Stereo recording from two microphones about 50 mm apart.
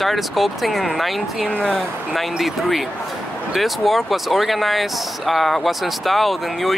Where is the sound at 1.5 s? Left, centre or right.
Left.